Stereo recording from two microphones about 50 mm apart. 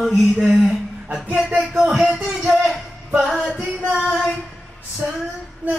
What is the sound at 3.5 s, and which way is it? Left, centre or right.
Singing, right.